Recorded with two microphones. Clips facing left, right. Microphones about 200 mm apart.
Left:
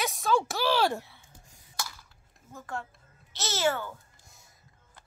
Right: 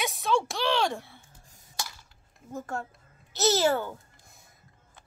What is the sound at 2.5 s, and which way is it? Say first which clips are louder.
Speech: right 4 dB; 45° right (ahead or behind).